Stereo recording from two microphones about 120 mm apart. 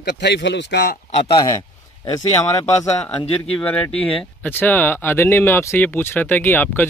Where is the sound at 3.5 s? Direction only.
10° left (ahead or behind).